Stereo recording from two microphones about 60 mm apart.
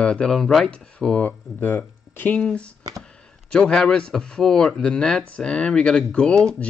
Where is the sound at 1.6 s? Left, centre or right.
Left.